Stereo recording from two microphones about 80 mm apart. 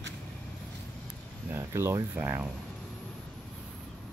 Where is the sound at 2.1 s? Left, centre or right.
Right.